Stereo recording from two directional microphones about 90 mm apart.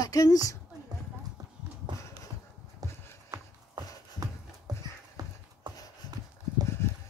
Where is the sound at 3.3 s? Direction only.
45° right (ahead or behind).